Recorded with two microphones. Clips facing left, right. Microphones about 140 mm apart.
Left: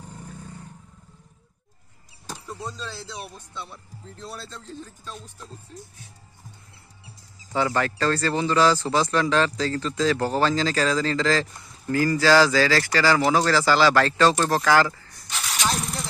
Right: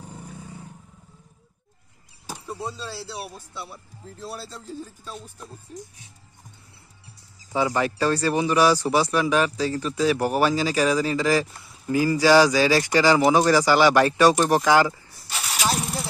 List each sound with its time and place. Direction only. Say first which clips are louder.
0.0 s vehicle: right 1 dB; 10° right (ahead or behind)
2.2 s speech: right 2 dB; 10° right (ahead or behind)
7.5 s speech: right 1 dB; 15° right (ahead or behind)